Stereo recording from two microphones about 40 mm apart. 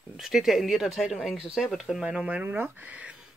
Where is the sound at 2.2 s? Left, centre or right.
Right.